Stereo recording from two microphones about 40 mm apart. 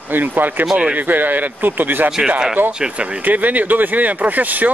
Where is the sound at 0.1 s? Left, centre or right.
Right.